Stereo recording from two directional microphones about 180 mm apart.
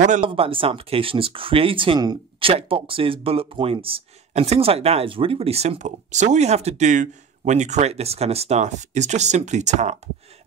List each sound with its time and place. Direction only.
0.2 s speech: 30° right (ahead or behind)